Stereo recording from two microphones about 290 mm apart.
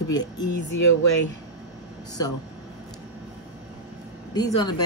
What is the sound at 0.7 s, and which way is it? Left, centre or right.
Speech, left.